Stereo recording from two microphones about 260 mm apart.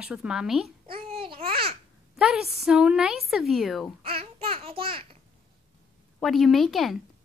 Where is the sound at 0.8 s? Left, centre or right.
Right.